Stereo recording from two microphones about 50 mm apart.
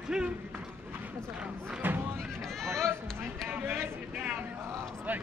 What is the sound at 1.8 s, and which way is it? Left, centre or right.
Music, right.